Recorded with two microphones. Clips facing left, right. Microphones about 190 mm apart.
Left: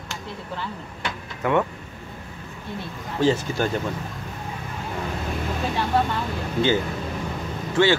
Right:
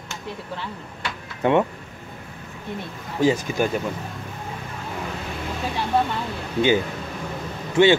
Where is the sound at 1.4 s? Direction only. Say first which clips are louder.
Right 3 dB; 25° right (ahead or behind).